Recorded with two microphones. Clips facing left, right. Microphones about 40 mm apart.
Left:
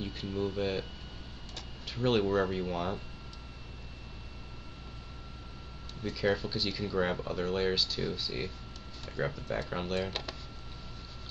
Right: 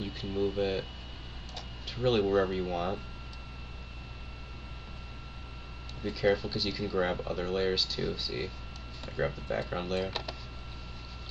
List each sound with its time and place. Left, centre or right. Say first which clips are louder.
0.0 s a sound: right 1 dB; centre
0.3 s speech: right 3 dB; centre
0.6 s speech: right 2 dB; centre
6.1 s speech: right 3 dB; centre